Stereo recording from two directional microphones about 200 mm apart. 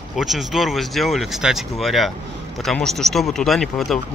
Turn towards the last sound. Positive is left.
turn(degrees=0)  # may be behind; listen again after turning